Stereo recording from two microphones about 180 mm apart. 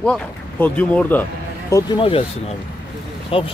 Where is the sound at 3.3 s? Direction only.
30° left (ahead or behind).